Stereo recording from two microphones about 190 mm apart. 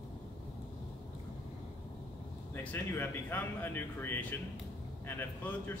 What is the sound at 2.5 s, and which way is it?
Speech, 10° left (ahead or behind).